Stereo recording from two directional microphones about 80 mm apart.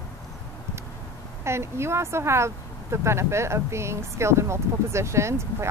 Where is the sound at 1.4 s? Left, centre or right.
Right.